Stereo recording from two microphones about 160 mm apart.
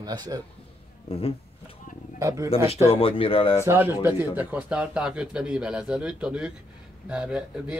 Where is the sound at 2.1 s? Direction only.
20° right (ahead or behind).